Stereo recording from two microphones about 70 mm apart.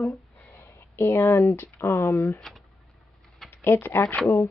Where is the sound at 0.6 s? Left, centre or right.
Left.